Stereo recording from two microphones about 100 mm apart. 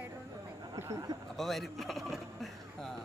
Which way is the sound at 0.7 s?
30° right (ahead or behind).